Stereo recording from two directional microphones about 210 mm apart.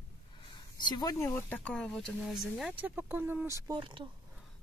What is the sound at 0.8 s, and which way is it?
Speech, 20° left (ahead or behind).